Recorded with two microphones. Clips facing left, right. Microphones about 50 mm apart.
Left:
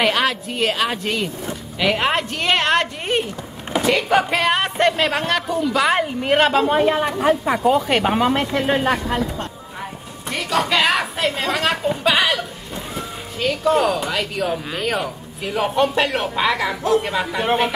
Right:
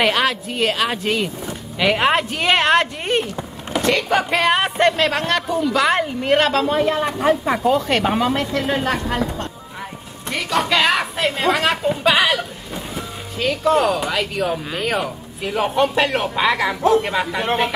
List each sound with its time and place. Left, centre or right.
0.0 s speech: centre
7.1 s speech: centre
8.7 s speech: centre
10.3 s a sound: centre
11.2 s speech: centre